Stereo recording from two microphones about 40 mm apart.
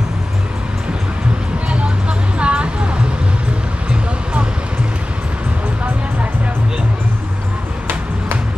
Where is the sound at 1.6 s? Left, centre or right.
Right.